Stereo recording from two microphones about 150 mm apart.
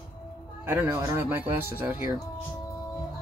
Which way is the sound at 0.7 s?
15° right (ahead or behind).